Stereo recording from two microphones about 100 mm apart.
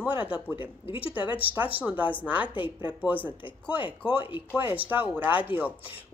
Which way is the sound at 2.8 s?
15° right (ahead or behind).